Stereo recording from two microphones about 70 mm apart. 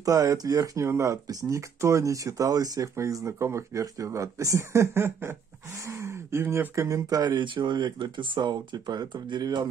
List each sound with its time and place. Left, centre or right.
0.0 s speech: right
0.8 s speech: right